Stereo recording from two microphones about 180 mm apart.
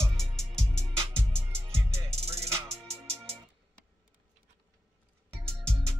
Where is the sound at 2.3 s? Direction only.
15° right (ahead or behind).